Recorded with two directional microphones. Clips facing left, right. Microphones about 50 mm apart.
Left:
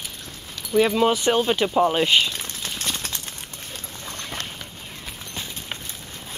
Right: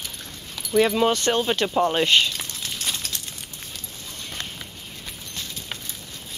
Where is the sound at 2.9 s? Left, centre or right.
Left.